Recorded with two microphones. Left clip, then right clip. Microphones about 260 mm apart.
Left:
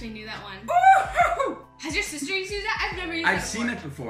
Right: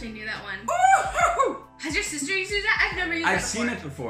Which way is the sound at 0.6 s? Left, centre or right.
Centre.